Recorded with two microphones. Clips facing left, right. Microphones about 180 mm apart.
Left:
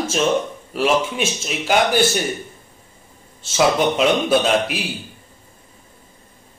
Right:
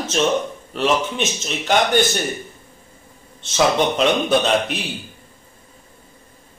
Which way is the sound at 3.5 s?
5° left (ahead or behind).